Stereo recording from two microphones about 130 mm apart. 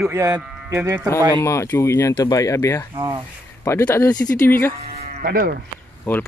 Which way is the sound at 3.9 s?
25° left (ahead or behind).